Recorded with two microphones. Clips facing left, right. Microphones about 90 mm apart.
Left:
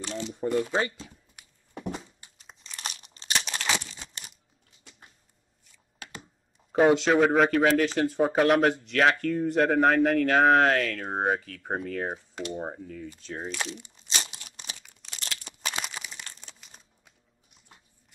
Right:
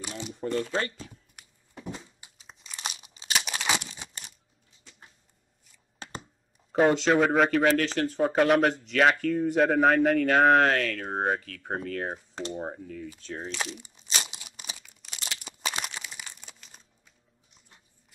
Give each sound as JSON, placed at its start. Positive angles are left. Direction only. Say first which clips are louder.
{"t": 0.0, "sound": "a sound", "louder": "left 4 dB", "side_deg": -10}
{"t": 0.3, "sound": "speech", "louder": "left 2 dB", "side_deg": 10}
{"t": 1.7, "sound": "a sound", "louder": "left 4 dB", "side_deg": 60}
{"t": 2.3, "sound": "crumpling", "louder": "even", "side_deg": -5}
{"t": 6.7, "sound": "speech", "louder": "left 1 dB", "side_deg": 0}
{"t": 13.2, "sound": "crumpling", "louder": "left 1 dB", "side_deg": 5}